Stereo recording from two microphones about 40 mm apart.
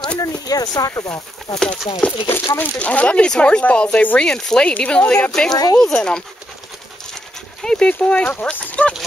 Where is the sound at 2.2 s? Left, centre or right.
Left.